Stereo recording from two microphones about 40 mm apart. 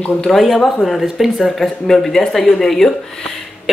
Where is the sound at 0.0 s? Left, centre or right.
Left.